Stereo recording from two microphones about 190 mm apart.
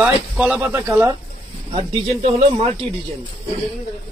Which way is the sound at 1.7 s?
30° right (ahead or behind).